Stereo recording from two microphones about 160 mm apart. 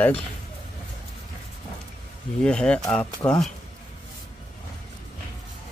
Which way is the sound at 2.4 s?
5° left (ahead or behind).